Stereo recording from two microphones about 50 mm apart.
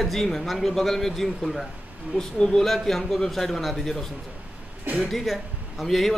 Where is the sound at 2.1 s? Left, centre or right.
Centre.